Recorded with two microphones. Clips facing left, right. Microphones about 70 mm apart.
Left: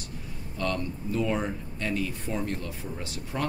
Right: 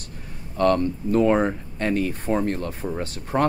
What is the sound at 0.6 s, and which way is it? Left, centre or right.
Speech, right.